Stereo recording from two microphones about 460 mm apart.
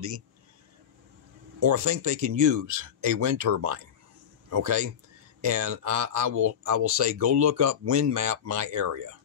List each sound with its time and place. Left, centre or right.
1.6 s speech: right